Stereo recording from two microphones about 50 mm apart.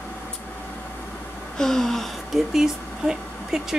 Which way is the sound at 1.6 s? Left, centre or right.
Centre.